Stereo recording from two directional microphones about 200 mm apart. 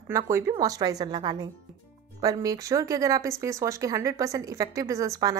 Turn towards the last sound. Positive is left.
turn(degrees=-15)  # may be behind; listen again after turning